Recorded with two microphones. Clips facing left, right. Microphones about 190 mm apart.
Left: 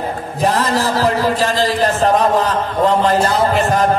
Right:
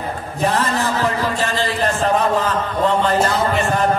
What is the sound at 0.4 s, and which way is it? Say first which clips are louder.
A man's voice: left 3 dB; 35° left (ahead or behind).